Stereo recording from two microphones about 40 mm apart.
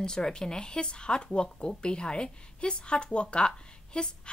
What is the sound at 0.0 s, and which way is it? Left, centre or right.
A woman's voice, centre.